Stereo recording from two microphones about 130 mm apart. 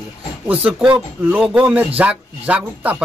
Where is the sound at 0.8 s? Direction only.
10° right (ahead or behind).